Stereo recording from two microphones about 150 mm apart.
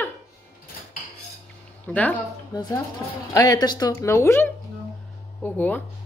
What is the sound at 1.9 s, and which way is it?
Speech, 10° left (ahead or behind).